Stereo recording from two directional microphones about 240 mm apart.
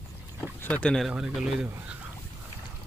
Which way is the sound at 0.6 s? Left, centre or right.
Centre.